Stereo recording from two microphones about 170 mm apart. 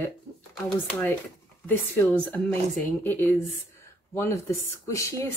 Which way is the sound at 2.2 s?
10° left (ahead or behind).